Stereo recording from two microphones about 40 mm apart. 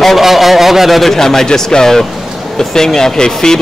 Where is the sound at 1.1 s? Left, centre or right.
Centre.